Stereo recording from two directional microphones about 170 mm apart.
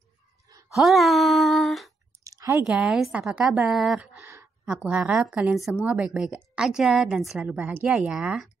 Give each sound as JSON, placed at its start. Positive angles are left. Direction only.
{"t": 0.7, "sound": "music", "side_deg": 0}
{"t": 2.2, "sound": "a sound", "side_deg": -20}
{"t": 2.6, "sound": "a woman's voice", "side_deg": -5}